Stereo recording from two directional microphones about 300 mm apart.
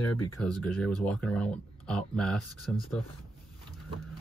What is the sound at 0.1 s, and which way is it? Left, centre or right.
Speech, left.